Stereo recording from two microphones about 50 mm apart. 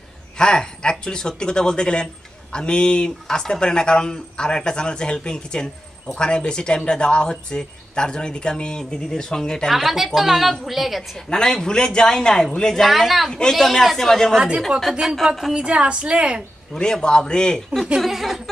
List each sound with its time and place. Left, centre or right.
0.4 s speech: centre
9.7 s a woman's voice: centre
11.1 s speech: centre
12.8 s a woman's voice: centre
13.3 s speech: centre
14.7 s a woman's voice: centre
15.2 s a woman's voice: centre
15.5 s a woman's voice: right
16.7 s speech: centre
17.9 s a woman's voice: centre